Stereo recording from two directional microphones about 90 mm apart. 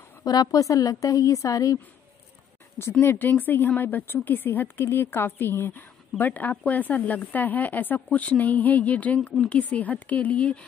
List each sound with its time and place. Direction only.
0.2 s a woman's voice: 45° left (ahead or behind)
2.9 s a woman's voice: 25° left (ahead or behind)